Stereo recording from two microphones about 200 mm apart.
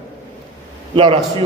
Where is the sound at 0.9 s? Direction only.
25° right (ahead or behind).